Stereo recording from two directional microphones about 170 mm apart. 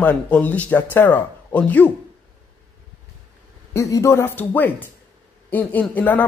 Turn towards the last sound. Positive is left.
turn(degrees=10)  # may be behind; listen again after turning